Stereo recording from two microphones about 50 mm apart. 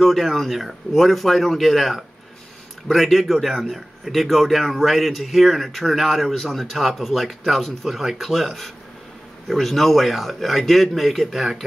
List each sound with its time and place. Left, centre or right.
0.0 s a man's voice: centre